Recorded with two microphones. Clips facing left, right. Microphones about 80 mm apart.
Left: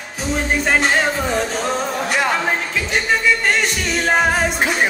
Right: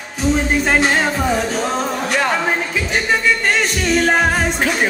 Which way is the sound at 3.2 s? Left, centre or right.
Centre.